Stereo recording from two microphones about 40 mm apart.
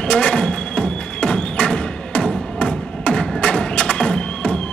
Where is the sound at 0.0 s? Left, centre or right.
Left.